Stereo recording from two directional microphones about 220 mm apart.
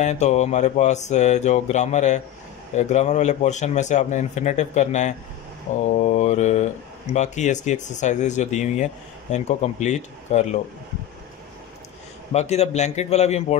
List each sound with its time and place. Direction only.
0.0 s speech: 30° left (ahead or behind)
12.3 s a man's voice: 30° left (ahead or behind)